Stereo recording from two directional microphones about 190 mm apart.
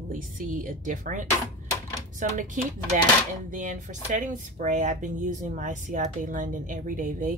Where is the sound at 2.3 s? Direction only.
40° right (ahead or behind).